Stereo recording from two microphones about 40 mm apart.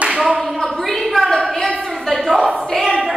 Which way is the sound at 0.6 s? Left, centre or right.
Centre.